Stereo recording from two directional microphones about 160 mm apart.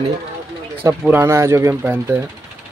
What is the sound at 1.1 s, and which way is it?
Speech, 15° right (ahead or behind).